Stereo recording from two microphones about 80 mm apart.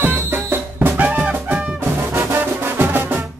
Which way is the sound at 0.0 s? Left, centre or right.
Right.